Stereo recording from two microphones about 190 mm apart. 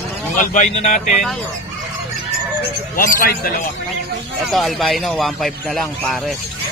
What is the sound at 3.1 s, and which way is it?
Speech, 50° left (ahead or behind).